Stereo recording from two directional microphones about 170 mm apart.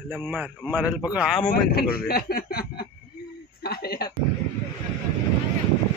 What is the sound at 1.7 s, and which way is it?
Speech, 60° left (ahead or behind).